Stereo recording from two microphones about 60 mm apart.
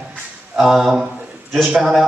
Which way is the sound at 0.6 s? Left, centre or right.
Centre.